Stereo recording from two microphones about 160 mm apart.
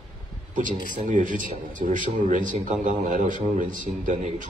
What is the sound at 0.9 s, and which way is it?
Speech, 55° right (ahead or behind).